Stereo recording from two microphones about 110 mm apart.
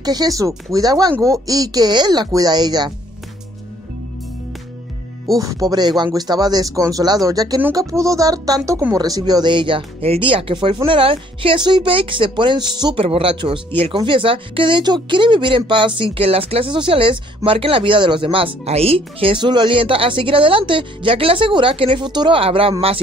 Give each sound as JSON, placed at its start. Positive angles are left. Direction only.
{"t": 0.0, "sound": "speech", "side_deg": -35}
{"t": 5.3, "sound": "speech", "side_deg": -35}
{"t": 12.9, "sound": "speech", "side_deg": -60}
{"t": 22.4, "sound": "speech", "side_deg": -55}